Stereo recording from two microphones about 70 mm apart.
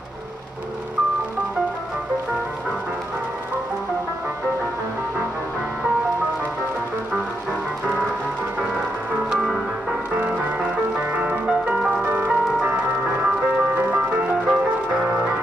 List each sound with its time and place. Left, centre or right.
10.1 s music: centre
14.3 s music: centre